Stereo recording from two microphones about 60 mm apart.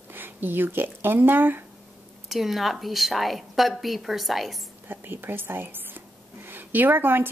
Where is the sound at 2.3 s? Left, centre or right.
Centre.